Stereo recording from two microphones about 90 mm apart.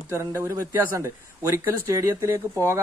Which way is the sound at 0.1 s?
30° right (ahead or behind).